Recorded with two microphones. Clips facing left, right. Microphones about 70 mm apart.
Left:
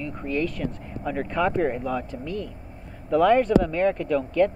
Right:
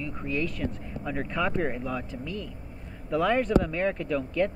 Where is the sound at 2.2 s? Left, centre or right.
Left.